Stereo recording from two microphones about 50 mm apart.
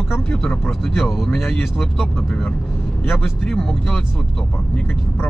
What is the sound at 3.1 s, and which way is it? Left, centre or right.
Speech, centre.